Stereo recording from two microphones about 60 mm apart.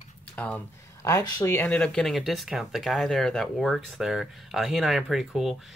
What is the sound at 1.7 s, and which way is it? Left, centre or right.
Speech, centre.